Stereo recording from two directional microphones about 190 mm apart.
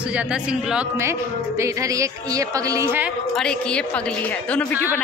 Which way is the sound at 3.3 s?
5° left (ahead or behind).